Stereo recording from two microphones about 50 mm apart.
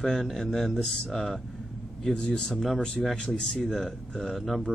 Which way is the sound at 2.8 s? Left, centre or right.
Centre.